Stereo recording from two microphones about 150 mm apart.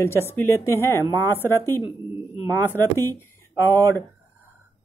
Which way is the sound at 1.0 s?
20° right (ahead or behind).